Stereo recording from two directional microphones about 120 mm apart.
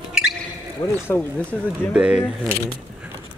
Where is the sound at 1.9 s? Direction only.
10° right (ahead or behind).